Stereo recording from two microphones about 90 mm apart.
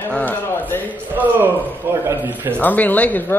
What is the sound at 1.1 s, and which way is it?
Speech, 20° right (ahead or behind).